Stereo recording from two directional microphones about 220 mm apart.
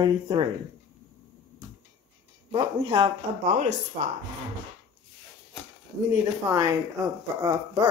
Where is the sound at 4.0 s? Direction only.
35° right (ahead or behind).